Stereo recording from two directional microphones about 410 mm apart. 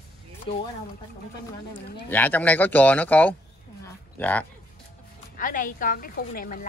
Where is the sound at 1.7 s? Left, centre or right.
Centre.